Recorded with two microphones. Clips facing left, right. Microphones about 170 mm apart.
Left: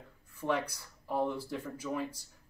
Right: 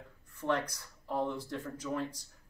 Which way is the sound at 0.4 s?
10° left (ahead or behind).